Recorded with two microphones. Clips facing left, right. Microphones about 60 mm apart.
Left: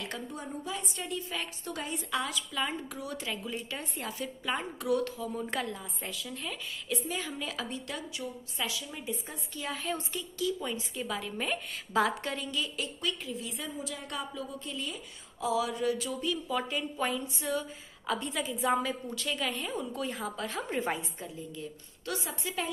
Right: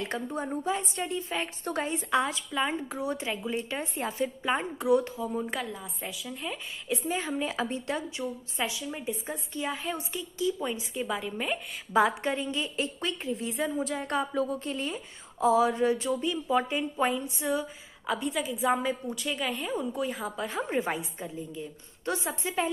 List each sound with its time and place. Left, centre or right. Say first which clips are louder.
0.0 s a woman's voice: right 6 dB; right; by 11.6 s centre
11.9 s a woman's voice: right 4 dB; right
18.0 s a woman's voice: right 3 dB; centre
21.4 s a woman's voice: right 3 dB; right